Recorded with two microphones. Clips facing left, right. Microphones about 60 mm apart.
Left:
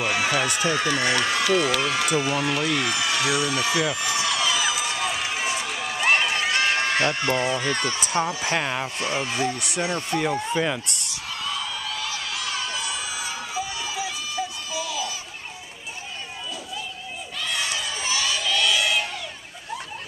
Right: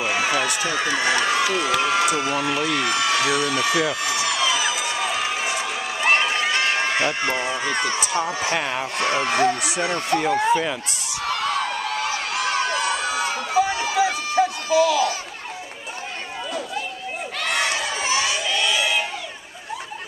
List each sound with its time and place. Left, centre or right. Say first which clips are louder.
0.0 s run: right 1 dB; centre
0.7 s speech: right 4 dB; centre
4.0 s speech: right 2 dB; right
4.9 s run: right 3 dB; centre; by 8.1 s right
8.3 s speech: right 2 dB; right
8.5 s speech: right 1 dB; centre
8.9 s speech: right 5 dB; right
10.3 s speech: right 7 dB; right
11.2 s a sound: right 8 dB; right
17.4 s crowd: right 5 dB; right; by 19.0 s centre